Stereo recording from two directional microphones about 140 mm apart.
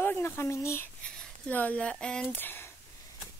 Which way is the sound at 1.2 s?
10° left (ahead or behind).